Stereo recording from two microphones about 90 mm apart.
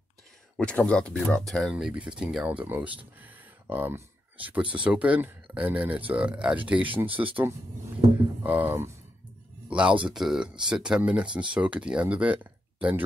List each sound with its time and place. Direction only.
0.6 s speech: 15° left (ahead or behind)
1.7 s speech: 10° right (ahead or behind)
2.4 s speech: 20° right (ahead or behind)
7.1 s speech: 75° right (ahead or behind)
8.4 s speech: 20° right (ahead or behind)